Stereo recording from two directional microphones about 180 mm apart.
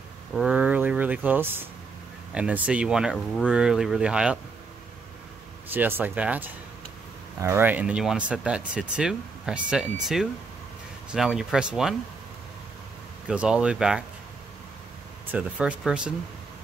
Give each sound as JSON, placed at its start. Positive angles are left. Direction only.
{"t": 0.4, "sound": "speech", "side_deg": -5}
{"t": 5.7, "sound": "speech", "side_deg": -10}
{"t": 11.1, "sound": "speech", "side_deg": 0}
{"t": 13.3, "sound": "speech", "side_deg": -5}
{"t": 15.3, "sound": "speech", "side_deg": -5}